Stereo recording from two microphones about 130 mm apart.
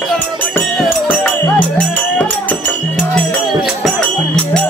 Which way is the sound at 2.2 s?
10° left (ahead or behind).